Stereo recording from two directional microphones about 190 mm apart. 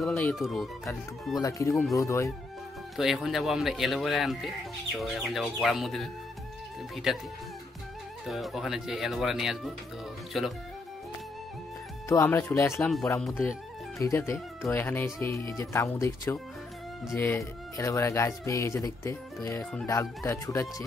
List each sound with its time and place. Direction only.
0.0 s speech: centre (ahead or behind)
1.4 s speech: 15° left (ahead or behind)
3.0 s speech: centre (ahead or behind)
7.1 s speech: centre (ahead or behind)
8.3 s speech: centre (ahead or behind)
12.1 s speech: 15° left (ahead or behind)
13.9 s speech: 15° left (ahead or behind)